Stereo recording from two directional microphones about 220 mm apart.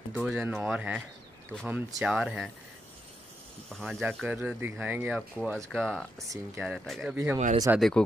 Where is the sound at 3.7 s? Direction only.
Centre (ahead or behind).